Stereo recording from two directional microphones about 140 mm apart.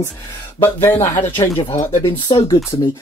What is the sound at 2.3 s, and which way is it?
Speech, 35° left (ahead or behind).